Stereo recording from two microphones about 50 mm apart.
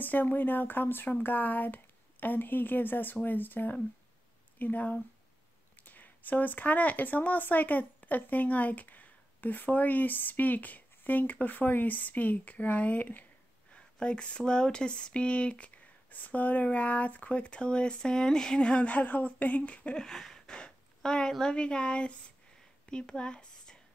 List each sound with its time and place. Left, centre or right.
0.0 s speech: left
13.7 s speech: centre
20.0 s a woman's voice: centre
22.8 s a sound: centre